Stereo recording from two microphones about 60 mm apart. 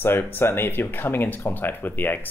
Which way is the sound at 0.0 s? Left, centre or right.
Left.